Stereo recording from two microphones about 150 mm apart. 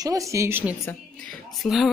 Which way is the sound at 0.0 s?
20° right (ahead or behind).